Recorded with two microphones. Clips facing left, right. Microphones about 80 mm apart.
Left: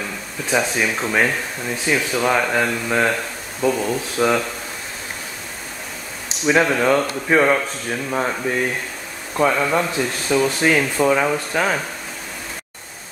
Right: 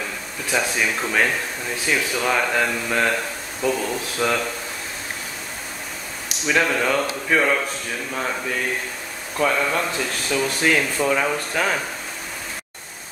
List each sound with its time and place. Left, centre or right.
0.5 s speech: centre
6.4 s speech: centre